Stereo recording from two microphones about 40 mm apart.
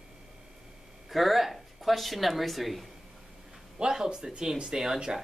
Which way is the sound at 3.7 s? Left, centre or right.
Centre.